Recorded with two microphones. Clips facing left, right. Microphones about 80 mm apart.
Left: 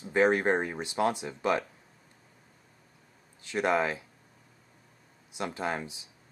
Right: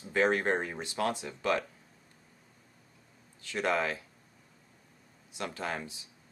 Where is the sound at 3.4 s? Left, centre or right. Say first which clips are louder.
Left 3 dB; centre.